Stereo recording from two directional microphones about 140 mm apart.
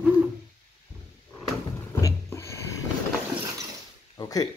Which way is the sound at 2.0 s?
20° left (ahead or behind).